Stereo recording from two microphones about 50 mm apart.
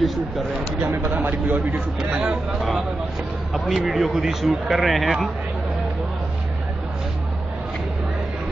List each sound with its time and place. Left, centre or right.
0.0 s speech: centre
1.1 s speech: right
2.0 s speech: right
3.5 s speech: centre